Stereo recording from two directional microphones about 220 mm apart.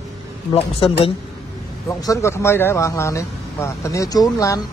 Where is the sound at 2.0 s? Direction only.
15° left (ahead or behind).